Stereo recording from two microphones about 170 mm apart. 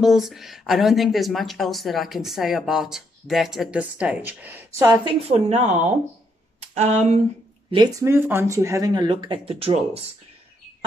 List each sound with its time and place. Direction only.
0.0 s speech: centre (ahead or behind); by 5.1 s 20° right (ahead or behind)
5.3 s speech: 40° right (ahead or behind)
7.7 s speech: 20° right (ahead or behind)